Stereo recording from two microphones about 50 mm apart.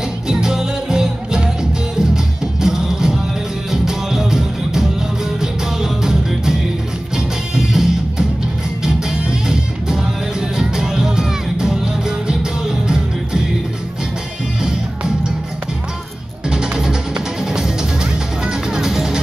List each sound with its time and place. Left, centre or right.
0.3 s music: centre
14.6 s music: centre
16.4 s music: centre